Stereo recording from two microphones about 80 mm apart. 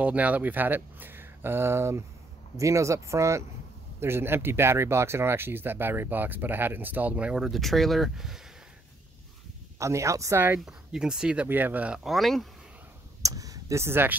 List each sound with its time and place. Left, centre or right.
0.0 s speech: centre
7.4 s speech: centre
9.8 s speech: right
10.6 s speech: centre
11.4 s speech: right
12.0 s speech: centre
13.2 s speech: right